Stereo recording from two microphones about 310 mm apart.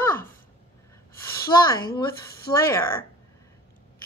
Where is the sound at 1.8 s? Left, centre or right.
Left.